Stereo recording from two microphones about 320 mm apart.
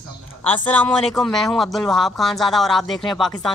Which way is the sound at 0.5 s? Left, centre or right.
Centre.